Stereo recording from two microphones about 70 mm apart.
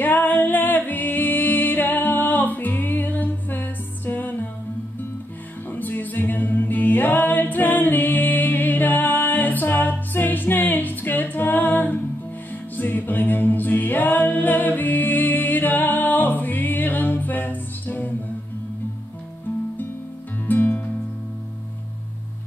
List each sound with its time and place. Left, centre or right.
0.0 s music: left
5.7 s music: left
12.7 s a capella: left
20.4 s music: left